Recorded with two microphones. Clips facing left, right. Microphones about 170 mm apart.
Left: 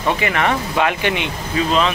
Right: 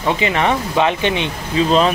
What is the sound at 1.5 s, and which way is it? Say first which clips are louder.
Speech: right 3 dB; 35° right (ahead or behind).